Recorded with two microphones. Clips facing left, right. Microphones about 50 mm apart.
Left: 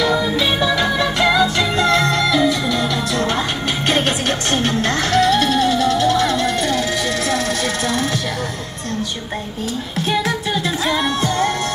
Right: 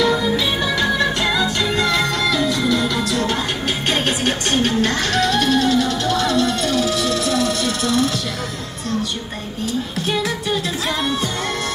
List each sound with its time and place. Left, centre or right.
0.0 s music: centre
2.3 s music: centre
3.1 s music: left
4.2 s music: centre
5.3 s music: centre
6.1 s music: centre
7.0 s a sound: left